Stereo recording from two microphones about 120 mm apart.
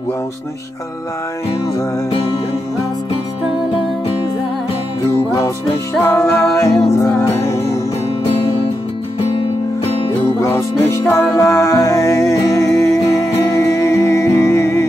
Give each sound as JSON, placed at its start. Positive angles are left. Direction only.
{"t": 6.0, "sound": "music", "side_deg": 20}
{"t": 8.3, "sound": "music", "side_deg": 55}
{"t": 10.4, "sound": "music", "side_deg": 25}